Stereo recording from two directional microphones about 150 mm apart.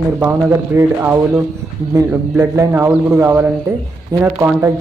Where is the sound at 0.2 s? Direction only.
15° right (ahead or behind).